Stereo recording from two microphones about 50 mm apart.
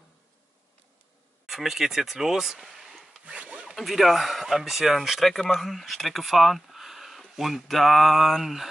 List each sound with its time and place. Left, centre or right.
1.4 s speech: centre
3.3 s rub: right
3.7 s speech: centre